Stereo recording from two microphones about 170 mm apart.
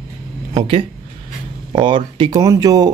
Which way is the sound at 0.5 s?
30° right (ahead or behind).